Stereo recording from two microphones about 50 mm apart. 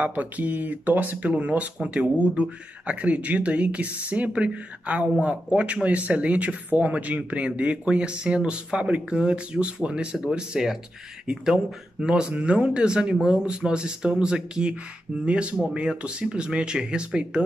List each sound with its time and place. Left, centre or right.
0.0 s speech: right